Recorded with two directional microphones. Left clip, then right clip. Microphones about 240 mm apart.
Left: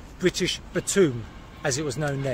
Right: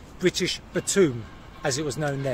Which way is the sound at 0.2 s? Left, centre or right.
Centre.